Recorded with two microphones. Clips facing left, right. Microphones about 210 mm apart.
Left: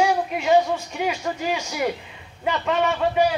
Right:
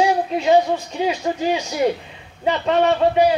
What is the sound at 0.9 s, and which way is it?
Speech, 30° right (ahead or behind).